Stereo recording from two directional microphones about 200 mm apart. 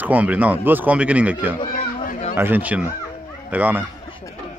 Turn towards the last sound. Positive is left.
turn(degrees=-10)  # may be behind; listen again after turning